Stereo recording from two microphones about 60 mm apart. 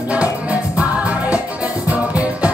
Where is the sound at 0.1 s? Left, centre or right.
Right.